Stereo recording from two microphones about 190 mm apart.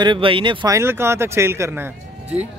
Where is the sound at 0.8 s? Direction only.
15° right (ahead or behind).